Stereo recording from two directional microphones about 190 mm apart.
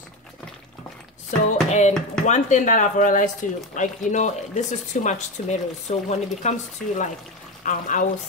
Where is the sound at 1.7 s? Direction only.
35° left (ahead or behind).